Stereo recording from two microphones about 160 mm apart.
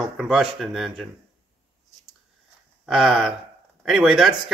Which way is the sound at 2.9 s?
Centre (ahead or behind).